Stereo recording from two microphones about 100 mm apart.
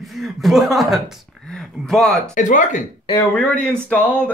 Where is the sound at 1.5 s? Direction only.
5° left (ahead or behind).